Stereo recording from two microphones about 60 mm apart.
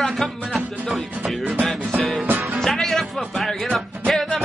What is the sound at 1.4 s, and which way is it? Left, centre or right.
Music, right.